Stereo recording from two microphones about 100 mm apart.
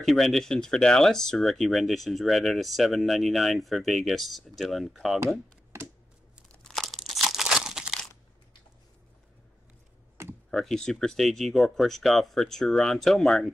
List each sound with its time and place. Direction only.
0.0 s speech: centre (ahead or behind)
6.5 s crumpling: 5° left (ahead or behind)
10.2 s a sound: 30° right (ahead or behind)
10.5 s speech: 5° left (ahead or behind)